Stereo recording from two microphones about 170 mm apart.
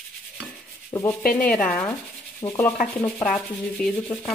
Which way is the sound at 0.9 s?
25° left (ahead or behind).